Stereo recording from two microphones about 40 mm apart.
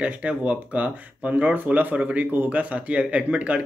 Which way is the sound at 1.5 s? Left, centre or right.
Right.